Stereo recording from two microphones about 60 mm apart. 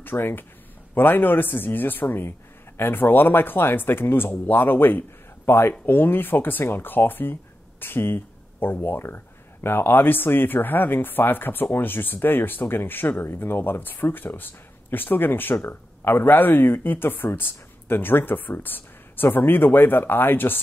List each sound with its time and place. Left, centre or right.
0.0 s speech: left